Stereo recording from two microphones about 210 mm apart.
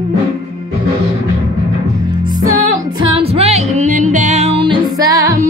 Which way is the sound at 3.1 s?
30° right (ahead or behind).